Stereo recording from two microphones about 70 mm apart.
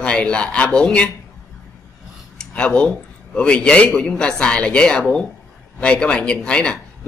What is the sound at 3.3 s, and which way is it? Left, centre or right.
A man's voice, centre.